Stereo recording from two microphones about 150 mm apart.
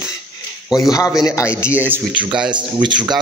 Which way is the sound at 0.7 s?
Centre (ahead or behind).